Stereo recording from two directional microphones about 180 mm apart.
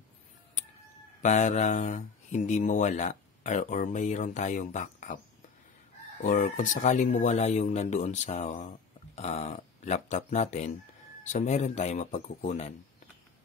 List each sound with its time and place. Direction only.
1.2 s speech: 40° left (ahead or behind)
6.2 s speech: 45° left (ahead or behind)